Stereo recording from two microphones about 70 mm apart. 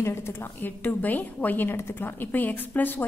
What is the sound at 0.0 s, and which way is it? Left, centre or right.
A woman's voice, left.